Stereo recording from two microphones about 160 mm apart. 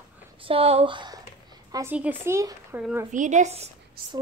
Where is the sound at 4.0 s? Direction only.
70° right (ahead or behind).